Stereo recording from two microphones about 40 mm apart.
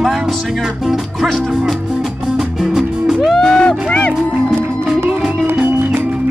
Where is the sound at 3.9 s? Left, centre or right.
Left.